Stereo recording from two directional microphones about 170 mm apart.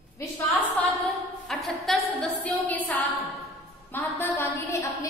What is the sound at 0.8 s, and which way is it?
A woman's voice, centre (ahead or behind).